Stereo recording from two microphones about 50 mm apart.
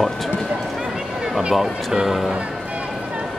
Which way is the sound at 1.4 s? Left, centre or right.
Centre.